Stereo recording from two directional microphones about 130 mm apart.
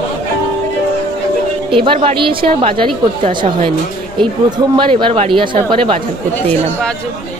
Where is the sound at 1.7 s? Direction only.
40° right (ahead or behind).